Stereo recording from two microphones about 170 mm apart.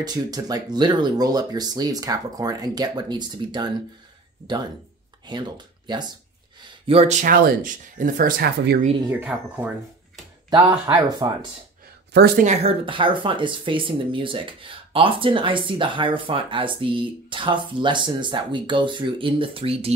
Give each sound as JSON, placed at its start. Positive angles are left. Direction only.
{"t": 0.0, "sound": "speech", "side_deg": -25}
{"t": 5.2, "sound": "speech", "side_deg": -25}
{"t": 9.1, "sound": "speech", "side_deg": -10}
{"t": 11.1, "sound": "speech", "side_deg": -25}
{"t": 12.4, "sound": "speech", "side_deg": -45}
{"t": 12.8, "sound": "speech", "side_deg": -30}